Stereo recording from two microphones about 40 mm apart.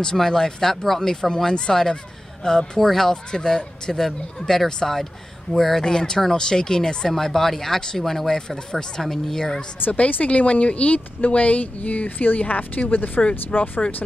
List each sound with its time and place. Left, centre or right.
0.0 s speech: centre
9.9 s speech: left